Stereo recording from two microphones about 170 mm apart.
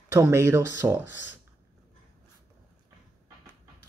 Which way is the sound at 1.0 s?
90° left.